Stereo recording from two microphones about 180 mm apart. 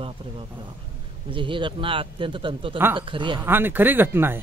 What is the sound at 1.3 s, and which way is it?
A man's voice, 30° right (ahead or behind).